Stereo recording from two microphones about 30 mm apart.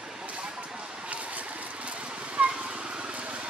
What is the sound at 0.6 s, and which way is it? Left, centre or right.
Cat, right.